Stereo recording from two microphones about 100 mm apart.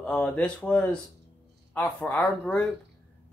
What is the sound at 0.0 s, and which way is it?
Speech, 10° left (ahead or behind).